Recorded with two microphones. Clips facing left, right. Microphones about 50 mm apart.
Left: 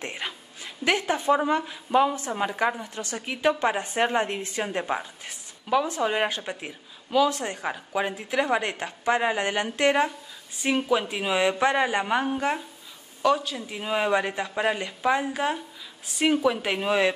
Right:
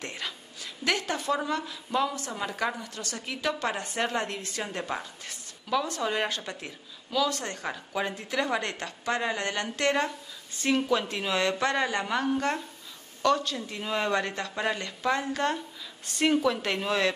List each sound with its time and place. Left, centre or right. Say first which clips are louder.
0.0 s a woman's voice: left 3 dB; left